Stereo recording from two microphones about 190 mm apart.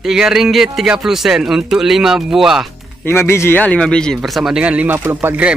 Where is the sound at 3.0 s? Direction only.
15° left (ahead or behind); by 5.5 s 10° right (ahead or behind).